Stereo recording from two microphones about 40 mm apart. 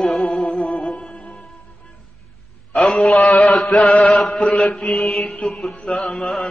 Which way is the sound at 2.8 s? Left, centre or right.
Centre.